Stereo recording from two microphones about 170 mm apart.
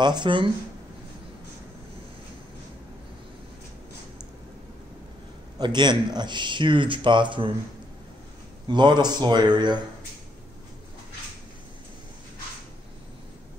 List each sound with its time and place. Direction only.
0.0 s speech: 25° right (ahead or behind)
5.6 s speech: 25° right (ahead or behind)
8.6 s speech: 25° right (ahead or behind)